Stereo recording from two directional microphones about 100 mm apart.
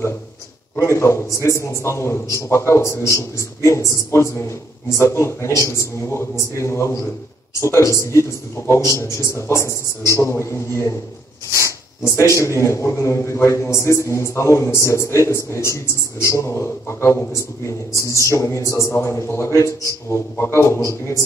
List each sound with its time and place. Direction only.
0.7 s a man's voice: 30° left (ahead or behind)